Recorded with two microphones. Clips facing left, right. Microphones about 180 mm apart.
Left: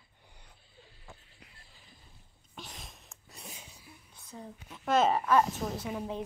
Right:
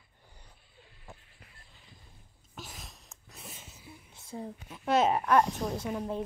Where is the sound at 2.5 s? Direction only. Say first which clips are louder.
Right 1 dB; 5° right (ahead or behind).